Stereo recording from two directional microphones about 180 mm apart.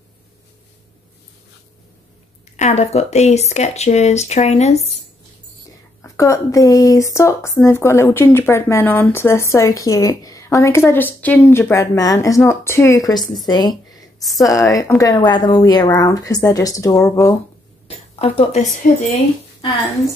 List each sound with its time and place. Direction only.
2.5 s speech: 40° left (ahead or behind)
6.0 s a woman's voice: 15° left (ahead or behind)
17.8 s a woman's voice: 35° left (ahead or behind)